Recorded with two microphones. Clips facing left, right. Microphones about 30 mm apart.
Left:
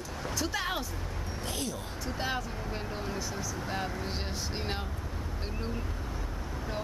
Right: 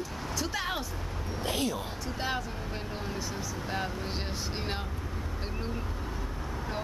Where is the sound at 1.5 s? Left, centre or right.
Centre.